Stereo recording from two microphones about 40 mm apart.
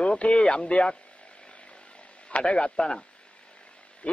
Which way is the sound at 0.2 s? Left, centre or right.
Left.